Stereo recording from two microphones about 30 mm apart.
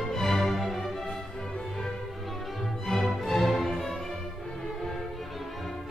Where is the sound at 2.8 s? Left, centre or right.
Centre.